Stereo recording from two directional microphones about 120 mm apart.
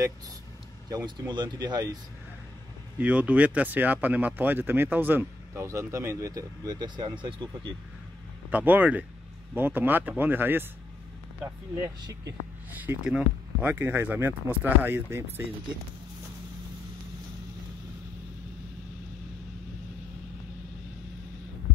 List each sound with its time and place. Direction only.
0.8 s speech: 35° right (ahead or behind)
3.0 s speech: 10° right (ahead or behind); by 7.7 s 40° right (ahead or behind)
8.5 s speech: 15° right (ahead or behind)